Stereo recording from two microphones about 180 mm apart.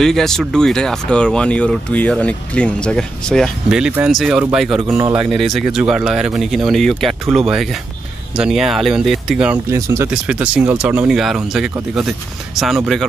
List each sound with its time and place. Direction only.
0.0 s speech: centre (ahead or behind)
9.8 s speech: 15° right (ahead or behind)
10.1 s speech: 5° right (ahead or behind)